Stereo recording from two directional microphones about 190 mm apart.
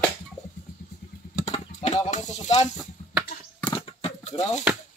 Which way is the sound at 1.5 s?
30° left (ahead or behind).